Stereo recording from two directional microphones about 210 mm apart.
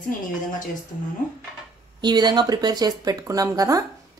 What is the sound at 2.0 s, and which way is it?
Speech, 20° right (ahead or behind).